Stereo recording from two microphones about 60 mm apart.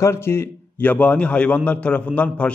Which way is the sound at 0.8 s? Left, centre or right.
Left.